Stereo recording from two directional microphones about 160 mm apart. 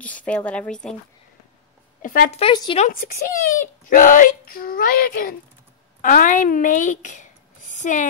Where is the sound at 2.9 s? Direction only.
60° left (ahead or behind).